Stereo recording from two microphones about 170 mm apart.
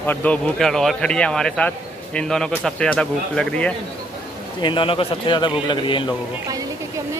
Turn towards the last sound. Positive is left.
turn(degrees=30)  # may be behind; listen again after turning